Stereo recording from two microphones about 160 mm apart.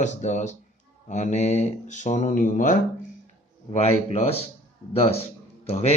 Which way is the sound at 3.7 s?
40° left (ahead or behind).